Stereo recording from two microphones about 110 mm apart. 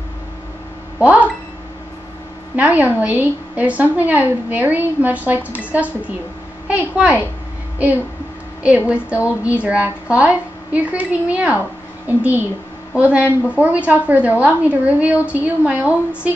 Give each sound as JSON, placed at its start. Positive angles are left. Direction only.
{"t": 0.9, "sound": "a woman's voice", "side_deg": -10}
{"t": 2.5, "sound": "a woman's voice", "side_deg": -15}
{"t": 8.6, "sound": "a woman's voice", "side_deg": -10}